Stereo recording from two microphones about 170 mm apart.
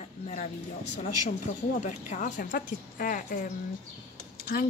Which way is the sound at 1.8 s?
45° left (ahead or behind).